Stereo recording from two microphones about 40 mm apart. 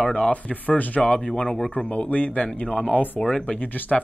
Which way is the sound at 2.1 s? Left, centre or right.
Left.